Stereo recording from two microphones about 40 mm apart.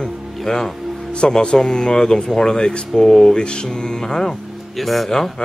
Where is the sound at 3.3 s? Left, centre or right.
Left.